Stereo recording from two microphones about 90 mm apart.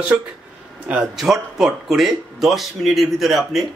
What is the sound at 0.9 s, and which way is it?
Speech, 5° right (ahead or behind).